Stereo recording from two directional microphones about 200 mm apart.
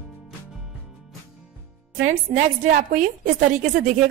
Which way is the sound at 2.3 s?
40° right (ahead or behind).